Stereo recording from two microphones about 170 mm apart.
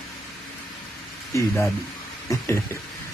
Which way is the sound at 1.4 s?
15° left (ahead or behind).